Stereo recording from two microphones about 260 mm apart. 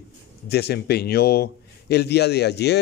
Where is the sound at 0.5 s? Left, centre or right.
Left.